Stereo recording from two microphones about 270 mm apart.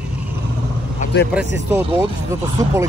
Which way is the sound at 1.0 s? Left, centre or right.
Left.